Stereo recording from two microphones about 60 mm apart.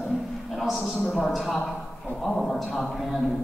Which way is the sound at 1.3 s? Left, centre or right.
Centre.